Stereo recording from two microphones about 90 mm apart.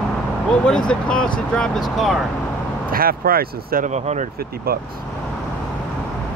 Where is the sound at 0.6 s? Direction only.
10° left (ahead or behind).